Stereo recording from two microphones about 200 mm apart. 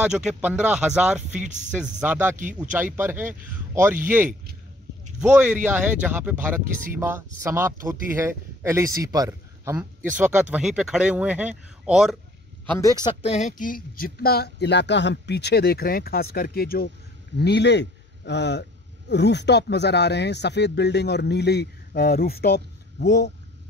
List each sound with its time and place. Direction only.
0.0 s a man's voice: 5° right (ahead or behind)
1.4 s speech: 35° right (ahead or behind)
1.7 s speech: 5° right (ahead or behind)
10.1 s a man's voice: 5° right (ahead or behind)
12.7 s speech: 20° left (ahead or behind); by 23.3 s 55° left (ahead or behind)